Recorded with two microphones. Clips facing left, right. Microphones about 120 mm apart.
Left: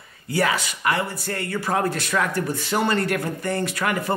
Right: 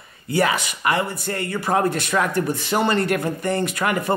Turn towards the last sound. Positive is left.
turn(degrees=-20)  # may be behind; listen again after turning